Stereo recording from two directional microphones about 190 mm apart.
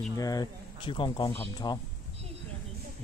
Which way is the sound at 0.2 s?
20° left (ahead or behind).